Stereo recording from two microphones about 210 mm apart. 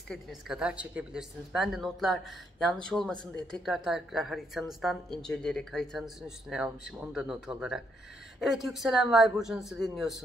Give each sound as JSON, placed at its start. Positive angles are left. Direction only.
{"t": 0.1, "sound": "a woman's voice", "side_deg": 0}